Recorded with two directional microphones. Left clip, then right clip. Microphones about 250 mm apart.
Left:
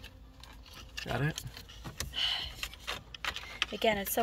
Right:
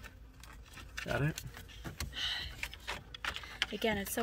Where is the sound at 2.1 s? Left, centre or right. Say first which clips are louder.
Left 5 dB; centre.